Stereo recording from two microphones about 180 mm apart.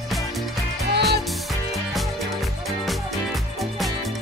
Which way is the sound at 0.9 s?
65° right (ahead or behind).